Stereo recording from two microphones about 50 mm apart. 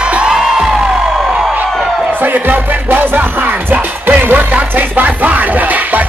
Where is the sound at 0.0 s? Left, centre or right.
Right.